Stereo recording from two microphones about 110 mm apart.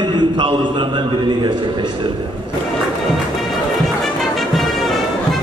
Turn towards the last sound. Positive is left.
turn(degrees=0)  # may be behind; listen again after turning